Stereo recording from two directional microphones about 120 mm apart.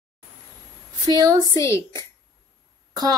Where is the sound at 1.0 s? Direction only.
30° right (ahead or behind).